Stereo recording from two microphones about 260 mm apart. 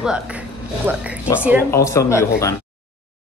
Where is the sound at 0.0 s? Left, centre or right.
Centre.